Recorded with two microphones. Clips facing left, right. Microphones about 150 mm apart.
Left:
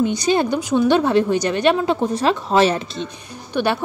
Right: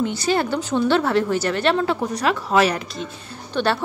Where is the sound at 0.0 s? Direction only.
15° left (ahead or behind).